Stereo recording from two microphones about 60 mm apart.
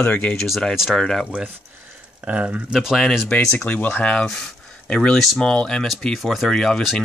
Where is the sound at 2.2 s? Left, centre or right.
Right.